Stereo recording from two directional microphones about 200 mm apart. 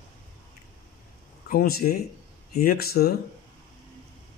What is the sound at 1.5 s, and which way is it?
Speech, 50° left (ahead or behind).